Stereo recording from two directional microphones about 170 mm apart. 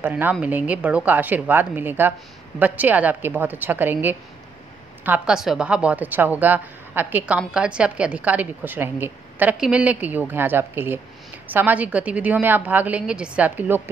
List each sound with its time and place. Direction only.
0.0 s a woman's voice: 10° right (ahead or behind)